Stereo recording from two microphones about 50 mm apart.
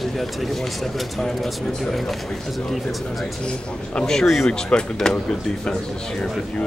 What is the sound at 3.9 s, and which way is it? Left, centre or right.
A man's voice, centre.